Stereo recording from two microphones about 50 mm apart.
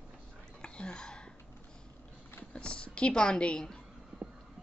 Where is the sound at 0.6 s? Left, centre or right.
Left.